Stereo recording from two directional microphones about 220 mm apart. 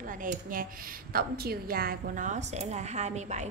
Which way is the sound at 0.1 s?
40° right (ahead or behind).